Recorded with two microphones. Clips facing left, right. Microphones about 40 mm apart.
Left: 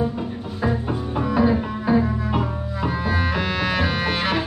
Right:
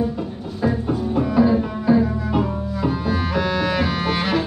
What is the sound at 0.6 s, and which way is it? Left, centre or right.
Music, centre.